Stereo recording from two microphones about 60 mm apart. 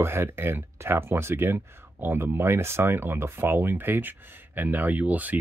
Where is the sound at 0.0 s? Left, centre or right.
Right.